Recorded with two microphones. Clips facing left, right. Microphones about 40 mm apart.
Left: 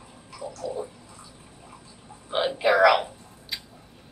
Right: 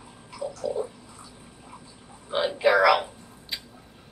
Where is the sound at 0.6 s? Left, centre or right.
Centre.